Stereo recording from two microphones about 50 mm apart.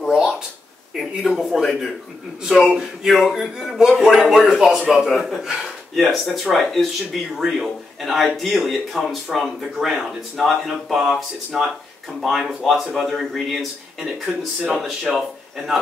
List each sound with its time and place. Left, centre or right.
0.0 s a sound: centre
0.9 s speech: centre
5.1 s speech: centre
5.4 s speech: centre